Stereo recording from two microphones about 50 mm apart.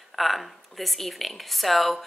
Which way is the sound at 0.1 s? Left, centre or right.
Centre.